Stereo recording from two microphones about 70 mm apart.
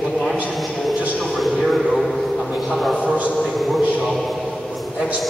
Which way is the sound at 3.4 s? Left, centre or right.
Centre.